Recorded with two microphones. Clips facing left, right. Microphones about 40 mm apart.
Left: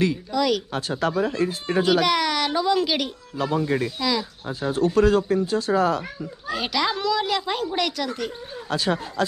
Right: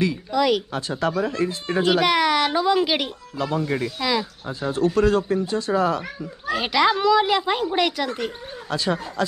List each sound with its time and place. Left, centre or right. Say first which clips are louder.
0.3 s speech: right 2 dB; centre
0.7 s speech: even; centre
3.3 s speech: left 1 dB; centre
4.0 s speech: right 1 dB; centre
4.5 s speech: even; centre
6.5 s speech: right 5 dB; centre
8.6 s speech: even; centre